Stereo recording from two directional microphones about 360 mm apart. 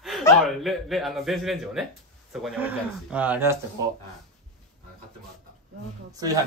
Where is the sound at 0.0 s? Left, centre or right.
Centre.